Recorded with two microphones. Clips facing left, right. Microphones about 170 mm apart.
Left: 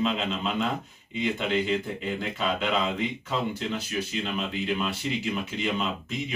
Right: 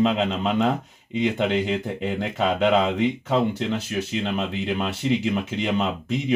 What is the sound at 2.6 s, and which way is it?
Speech, 70° right (ahead or behind).